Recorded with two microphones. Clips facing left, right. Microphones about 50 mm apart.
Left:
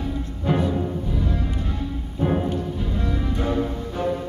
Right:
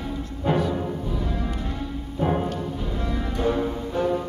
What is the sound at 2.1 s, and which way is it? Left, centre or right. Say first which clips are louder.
Music: left 1 dB; centre.